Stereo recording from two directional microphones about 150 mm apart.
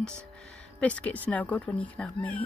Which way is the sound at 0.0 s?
5° left (ahead or behind).